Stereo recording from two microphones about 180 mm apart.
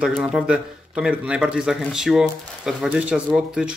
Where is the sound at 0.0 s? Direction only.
5° right (ahead or behind).